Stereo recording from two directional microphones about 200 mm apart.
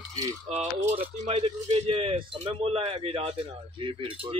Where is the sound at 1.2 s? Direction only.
30° right (ahead or behind).